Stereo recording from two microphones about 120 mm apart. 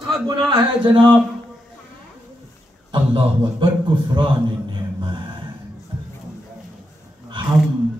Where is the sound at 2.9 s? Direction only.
40° right (ahead or behind).